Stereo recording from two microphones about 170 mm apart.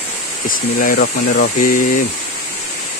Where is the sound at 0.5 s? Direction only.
55° left (ahead or behind).